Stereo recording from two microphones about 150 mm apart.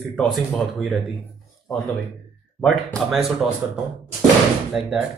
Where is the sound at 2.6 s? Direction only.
Centre (ahead or behind).